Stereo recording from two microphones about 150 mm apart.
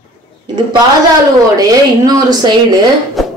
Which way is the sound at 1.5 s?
25° right (ahead or behind).